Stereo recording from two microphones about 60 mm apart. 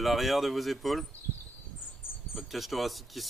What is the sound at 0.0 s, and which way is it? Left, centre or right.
Speech, centre.